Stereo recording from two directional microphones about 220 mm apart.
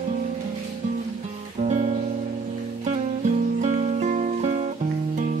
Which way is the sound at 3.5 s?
30° right (ahead or behind).